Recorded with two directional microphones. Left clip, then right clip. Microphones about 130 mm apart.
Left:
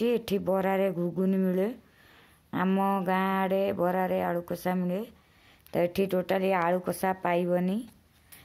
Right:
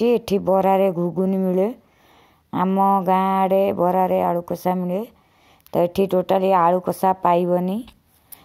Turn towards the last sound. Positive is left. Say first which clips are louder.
# right 9 dB
turn(degrees=-30)  # may be behind; listen again after turning